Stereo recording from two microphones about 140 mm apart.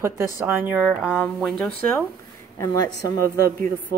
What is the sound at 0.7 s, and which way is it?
Speech, 10° right (ahead or behind).